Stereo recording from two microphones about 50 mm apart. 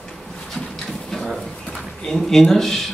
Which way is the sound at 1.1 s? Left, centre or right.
Centre.